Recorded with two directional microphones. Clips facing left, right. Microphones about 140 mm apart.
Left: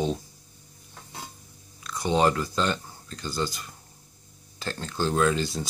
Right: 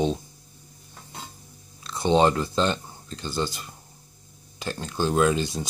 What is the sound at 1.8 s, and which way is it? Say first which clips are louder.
Speech: right 3 dB; 25° right (ahead or behind).